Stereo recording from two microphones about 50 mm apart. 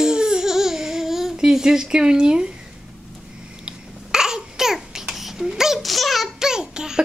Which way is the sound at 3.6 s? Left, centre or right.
Centre.